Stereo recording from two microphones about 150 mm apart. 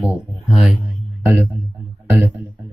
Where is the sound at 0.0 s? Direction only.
5° right (ahead or behind).